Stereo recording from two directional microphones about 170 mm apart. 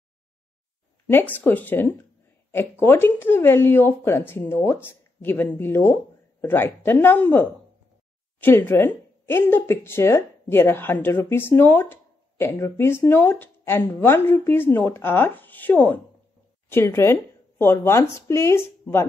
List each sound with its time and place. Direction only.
1.1 s a woman's voice: 10° left (ahead or behind)